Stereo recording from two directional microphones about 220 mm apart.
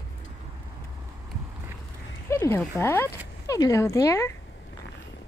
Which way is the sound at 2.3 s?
10° left (ahead or behind).